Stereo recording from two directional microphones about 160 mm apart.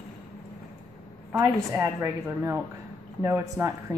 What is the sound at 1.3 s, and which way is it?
A woman's voice, 20° right (ahead or behind).